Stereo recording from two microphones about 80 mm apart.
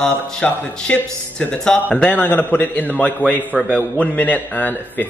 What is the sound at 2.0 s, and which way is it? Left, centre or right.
A man's voice, left.